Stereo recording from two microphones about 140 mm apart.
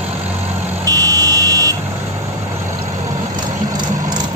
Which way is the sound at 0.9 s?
25° right (ahead or behind).